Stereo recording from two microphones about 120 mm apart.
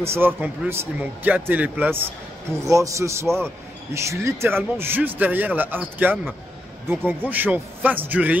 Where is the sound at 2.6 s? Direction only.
25° right (ahead or behind).